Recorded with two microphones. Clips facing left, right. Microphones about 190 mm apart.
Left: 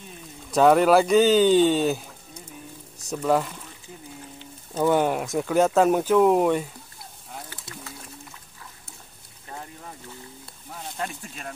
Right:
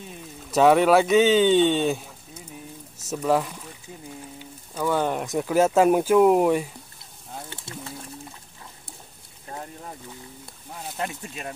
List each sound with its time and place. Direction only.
0.5 s speech: centre (ahead or behind)
4.7 s speech: 20° left (ahead or behind)
5.0 s speech: 5° left (ahead or behind)
7.4 s bird: 25° right (ahead or behind)
11.0 s speech: 20° right (ahead or behind)